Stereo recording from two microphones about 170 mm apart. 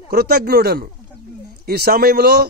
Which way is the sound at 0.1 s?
65° right (ahead or behind).